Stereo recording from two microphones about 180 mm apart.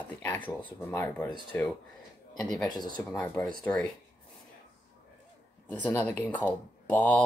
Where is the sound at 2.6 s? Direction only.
25° left (ahead or behind).